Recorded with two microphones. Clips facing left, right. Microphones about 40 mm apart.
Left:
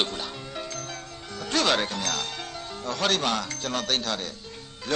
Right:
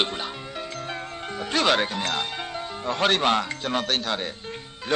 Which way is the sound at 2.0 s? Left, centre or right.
Right.